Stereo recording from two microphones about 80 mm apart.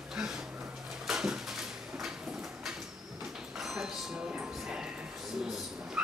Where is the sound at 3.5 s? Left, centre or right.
Centre.